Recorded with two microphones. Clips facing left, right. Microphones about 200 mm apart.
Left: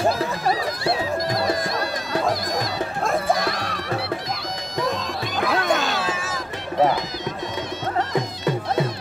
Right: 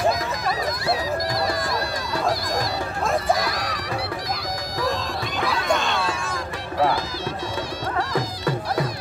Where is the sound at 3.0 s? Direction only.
Centre (ahead or behind).